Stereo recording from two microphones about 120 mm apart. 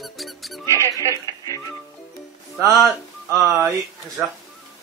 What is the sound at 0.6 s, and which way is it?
Mouse, 25° right (ahead or behind).